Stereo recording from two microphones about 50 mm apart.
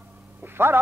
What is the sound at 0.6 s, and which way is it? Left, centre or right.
Music, right.